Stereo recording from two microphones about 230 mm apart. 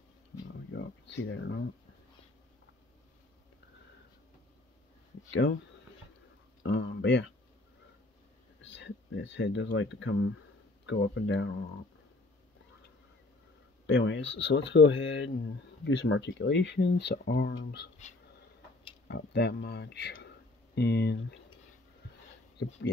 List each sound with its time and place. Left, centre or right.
0.7 s a sound: left
5.3 s speech: left
6.6 s speech: left
8.6 s speech: left
13.8 s speech: left
19.0 s speech: left